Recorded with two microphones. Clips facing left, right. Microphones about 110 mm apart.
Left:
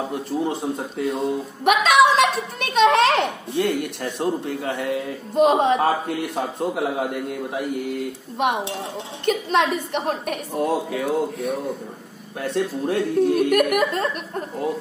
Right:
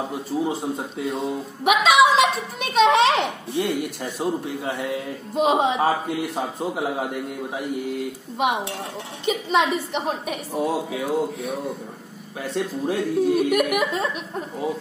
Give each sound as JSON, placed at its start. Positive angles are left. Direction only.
{"t": 0.0, "sound": "a man's voice", "side_deg": 0}
{"t": 3.5, "sound": "speech", "side_deg": 60}
{"t": 4.0, "sound": "a man's voice", "side_deg": -5}